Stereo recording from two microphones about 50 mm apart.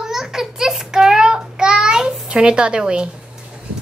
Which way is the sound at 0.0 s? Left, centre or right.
Centre.